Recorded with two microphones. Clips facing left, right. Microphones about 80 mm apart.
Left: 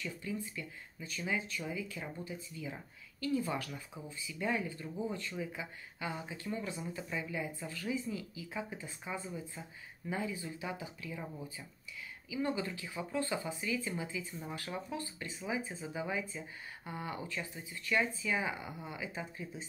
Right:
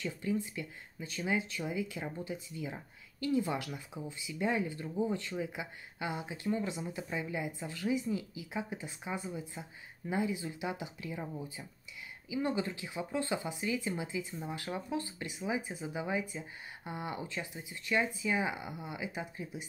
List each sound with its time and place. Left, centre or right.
0.0 s speech: right
1.6 s speech: right
7.1 s speech: right
7.3 s speech: centre
7.6 s speech: right
11.0 s speech: right
12.3 s speech: right